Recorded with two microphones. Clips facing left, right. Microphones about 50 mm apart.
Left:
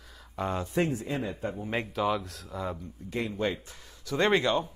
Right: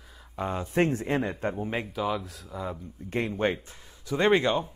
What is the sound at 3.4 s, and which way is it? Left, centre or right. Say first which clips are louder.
Speech: right 4 dB; right.